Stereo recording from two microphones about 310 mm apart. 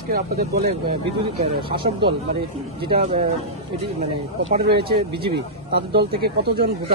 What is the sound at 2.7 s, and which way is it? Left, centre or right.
Speech, centre.